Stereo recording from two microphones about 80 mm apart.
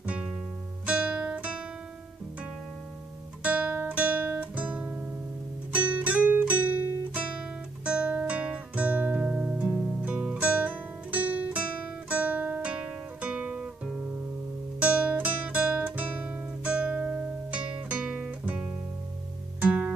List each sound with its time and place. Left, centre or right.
0.0 s music: centre
0.8 s guitar: centre
3.4 s guitar: centre
5.7 s music: centre
12.1 s guitar: centre
14.8 s music: centre